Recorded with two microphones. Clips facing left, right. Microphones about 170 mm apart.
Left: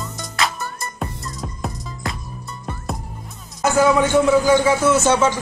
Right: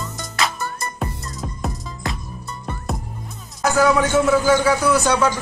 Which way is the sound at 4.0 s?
15° left (ahead or behind).